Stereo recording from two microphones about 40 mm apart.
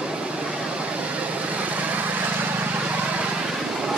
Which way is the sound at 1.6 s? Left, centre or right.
Right.